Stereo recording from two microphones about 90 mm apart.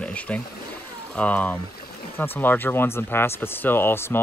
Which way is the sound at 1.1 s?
15° left (ahead or behind).